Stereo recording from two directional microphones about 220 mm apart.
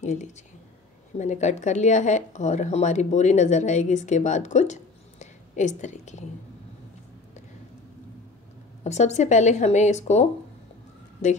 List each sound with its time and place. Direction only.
0.0 s a woman's voice: 35° left (ahead or behind)
8.8 s a woman's voice: 30° left (ahead or behind)